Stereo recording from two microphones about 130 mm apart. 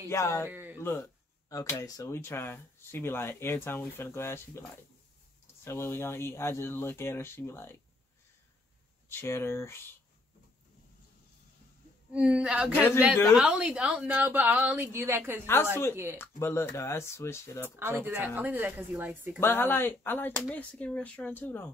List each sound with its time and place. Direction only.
0.1 s speech: 20° left (ahead or behind)
0.5 s a woman's voice: 15° right (ahead or behind)
0.7 s speech: 15° left (ahead or behind)
9.1 s speech: 20° left (ahead or behind)
12.1 s a woman's voice: 10° right (ahead or behind)
15.4 s speech: 20° left (ahead or behind)
17.7 s a woman's voice: 15° right (ahead or behind)
19.4 s speech: 15° left (ahead or behind)